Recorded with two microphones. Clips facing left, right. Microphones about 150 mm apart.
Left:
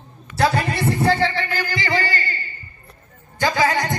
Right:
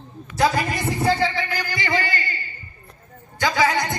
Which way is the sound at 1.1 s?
15° right (ahead or behind).